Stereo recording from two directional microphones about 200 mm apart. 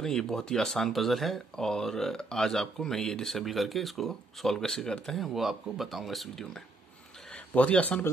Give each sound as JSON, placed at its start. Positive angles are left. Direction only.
{"t": 0.0, "sound": "speech", "side_deg": 5}